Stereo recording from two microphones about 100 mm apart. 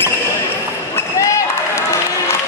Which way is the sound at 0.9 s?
30° left (ahead or behind).